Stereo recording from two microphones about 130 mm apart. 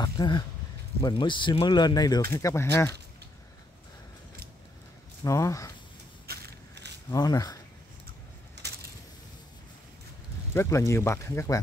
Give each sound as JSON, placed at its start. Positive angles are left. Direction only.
{"t": 0.0, "sound": "a sound", "side_deg": 35}
{"t": 1.2, "sound": "speech", "side_deg": 40}
{"t": 5.2, "sound": "speech", "side_deg": 25}
{"t": 7.1, "sound": "speech", "side_deg": 30}
{"t": 10.5, "sound": "speech", "side_deg": 20}